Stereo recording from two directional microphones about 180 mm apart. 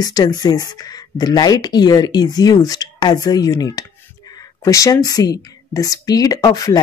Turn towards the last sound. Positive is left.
turn(degrees=20)  # may be behind; listen again after turning